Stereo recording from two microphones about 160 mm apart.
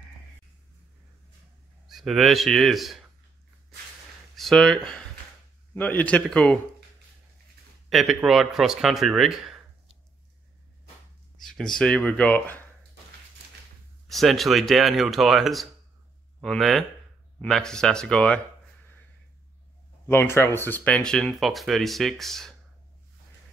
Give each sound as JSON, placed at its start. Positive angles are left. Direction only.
{"t": 1.9, "sound": "speech", "side_deg": 0}
{"t": 4.4, "sound": "speech", "side_deg": 0}
{"t": 7.9, "sound": "speech", "side_deg": 0}
{"t": 11.3, "sound": "speech", "side_deg": 5}
{"t": 14.0, "sound": "speech", "side_deg": 0}
{"t": 20.1, "sound": "speech", "side_deg": 15}